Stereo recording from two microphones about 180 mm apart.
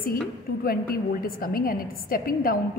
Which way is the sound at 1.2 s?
55° left (ahead or behind).